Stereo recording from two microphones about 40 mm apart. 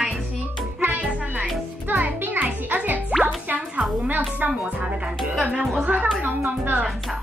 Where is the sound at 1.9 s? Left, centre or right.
Right.